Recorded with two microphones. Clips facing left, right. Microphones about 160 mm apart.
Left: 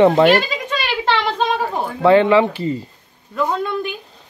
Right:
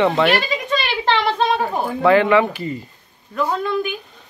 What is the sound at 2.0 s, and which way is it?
Speech, 25° left (ahead or behind).